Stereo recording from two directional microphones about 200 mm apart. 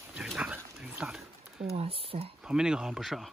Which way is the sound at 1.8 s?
30° right (ahead or behind).